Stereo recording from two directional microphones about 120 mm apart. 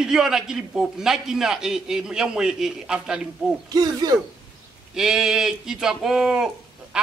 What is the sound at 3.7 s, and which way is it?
Speech, 30° right (ahead or behind).